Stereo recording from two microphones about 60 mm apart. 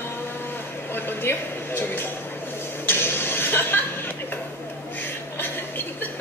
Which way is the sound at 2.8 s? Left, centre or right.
Left.